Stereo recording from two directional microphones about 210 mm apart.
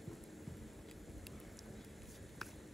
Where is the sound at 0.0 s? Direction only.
Centre (ahead or behind).